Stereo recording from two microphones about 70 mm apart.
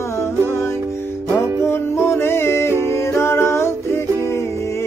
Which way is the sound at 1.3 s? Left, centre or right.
Left.